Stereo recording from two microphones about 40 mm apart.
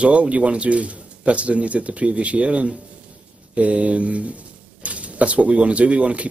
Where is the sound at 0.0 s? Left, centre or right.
Right.